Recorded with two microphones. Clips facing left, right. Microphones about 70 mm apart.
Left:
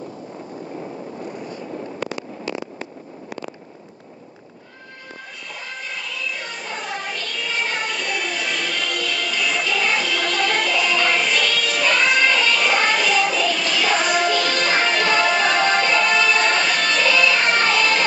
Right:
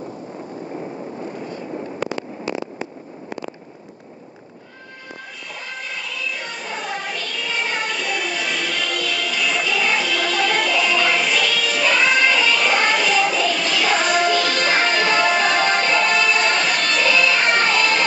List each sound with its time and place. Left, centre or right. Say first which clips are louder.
0.7 s vehicle: right 2 dB; centre
1.2 s a sound: right 1 dB; right
2.1 s fireworks: right 2 dB; right
6.0 s music: right 1 dB; centre